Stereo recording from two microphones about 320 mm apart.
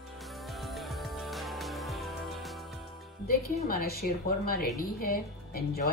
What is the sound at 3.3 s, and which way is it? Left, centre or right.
Speech, left.